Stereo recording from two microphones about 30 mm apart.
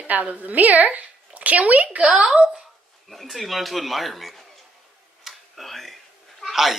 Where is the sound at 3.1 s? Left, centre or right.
Centre.